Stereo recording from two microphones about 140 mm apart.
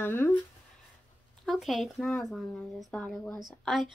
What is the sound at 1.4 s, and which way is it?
Speech, centre (ahead or behind).